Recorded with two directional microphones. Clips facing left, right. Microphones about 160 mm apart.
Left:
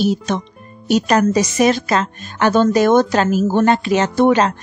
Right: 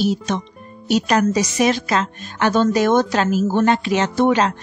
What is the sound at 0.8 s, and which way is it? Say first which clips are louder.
A woman's voice: left 2 dB; 45° left (ahead or behind).